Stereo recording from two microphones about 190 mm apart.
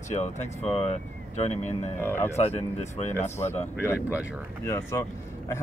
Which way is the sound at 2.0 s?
10° left (ahead or behind).